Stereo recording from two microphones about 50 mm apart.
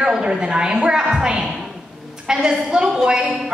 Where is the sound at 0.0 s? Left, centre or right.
Centre.